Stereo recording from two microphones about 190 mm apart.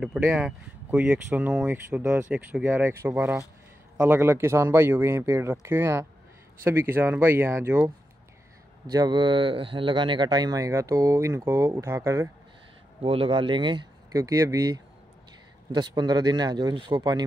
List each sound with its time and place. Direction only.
0.0 s speech: 5° right (ahead or behind)
8.9 s speech: 25° right (ahead or behind)
13.0 s speech: 30° right (ahead or behind)